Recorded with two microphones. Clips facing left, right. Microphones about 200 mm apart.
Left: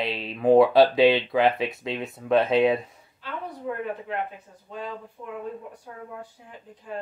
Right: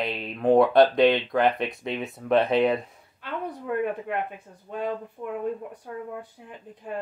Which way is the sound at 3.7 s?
65° right (ahead or behind).